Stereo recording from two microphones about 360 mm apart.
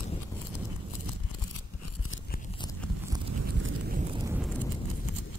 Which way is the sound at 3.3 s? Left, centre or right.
Right.